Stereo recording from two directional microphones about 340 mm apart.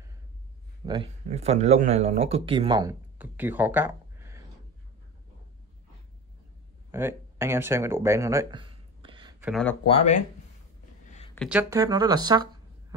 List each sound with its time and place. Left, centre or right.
0.8 s speech: centre
6.9 s a sound: centre
9.5 s speech: centre
9.8 s speech: centre
11.1 s a sound: centre
11.3 s speech: centre